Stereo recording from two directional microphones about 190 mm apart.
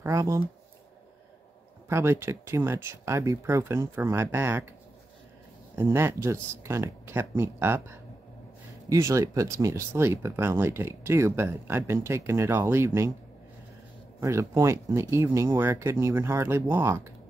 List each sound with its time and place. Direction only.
0.0 s speech: 15° right (ahead or behind)
1.9 s speech: 15° right (ahead or behind)
5.8 s speech: 15° right (ahead or behind)
14.2 s speech: 15° right (ahead or behind)